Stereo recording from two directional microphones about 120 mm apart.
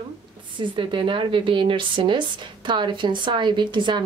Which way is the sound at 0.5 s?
45° right (ahead or behind).